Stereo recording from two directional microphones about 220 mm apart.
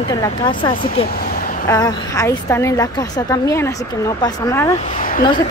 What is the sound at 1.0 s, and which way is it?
Vehicle, 45° left (ahead or behind).